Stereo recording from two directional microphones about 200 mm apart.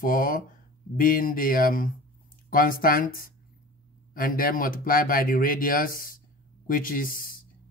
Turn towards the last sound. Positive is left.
turn(degrees=45)  # may be behind; listen again after turning